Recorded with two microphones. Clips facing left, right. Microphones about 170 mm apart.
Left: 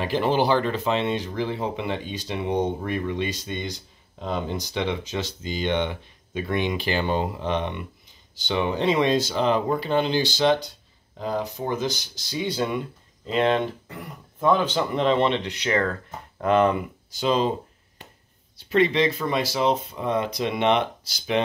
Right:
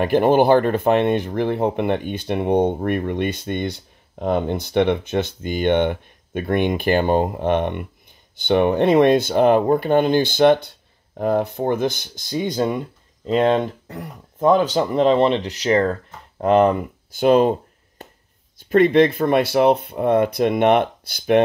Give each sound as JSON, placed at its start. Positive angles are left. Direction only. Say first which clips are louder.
{"t": 0.0, "sound": "speech", "louder": "right 7 dB", "side_deg": -55}
{"t": 17.1, "sound": "a sound", "louder": "right 8 dB", "side_deg": -55}
{"t": 18.6, "sound": "speech", "louder": "right 7 dB", "side_deg": -50}